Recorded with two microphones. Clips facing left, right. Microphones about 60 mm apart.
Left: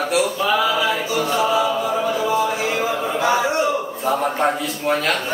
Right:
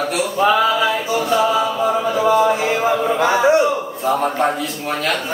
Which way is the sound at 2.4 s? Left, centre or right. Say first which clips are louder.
Right 4 dB; right.